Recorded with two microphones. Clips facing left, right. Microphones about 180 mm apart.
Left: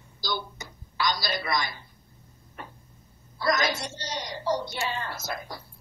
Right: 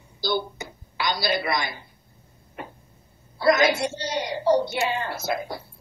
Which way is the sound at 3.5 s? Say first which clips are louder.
Right 7 dB; 60° right (ahead or behind).